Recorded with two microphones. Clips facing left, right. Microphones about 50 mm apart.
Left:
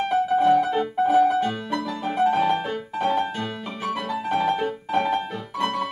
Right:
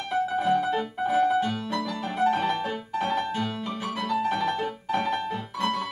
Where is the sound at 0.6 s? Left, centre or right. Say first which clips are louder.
Left 4 dB; centre.